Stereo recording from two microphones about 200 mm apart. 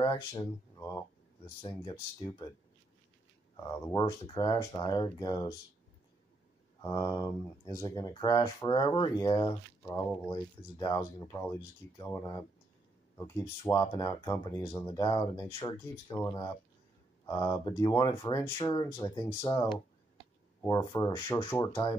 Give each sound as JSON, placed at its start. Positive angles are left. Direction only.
{"t": 0.0, "sound": "speech", "side_deg": 20}
{"t": 0.7, "sound": "a sound", "side_deg": 10}
{"t": 1.6, "sound": "speech", "side_deg": 20}
{"t": 3.9, "sound": "speech", "side_deg": 20}
{"t": 6.8, "sound": "speech", "side_deg": 20}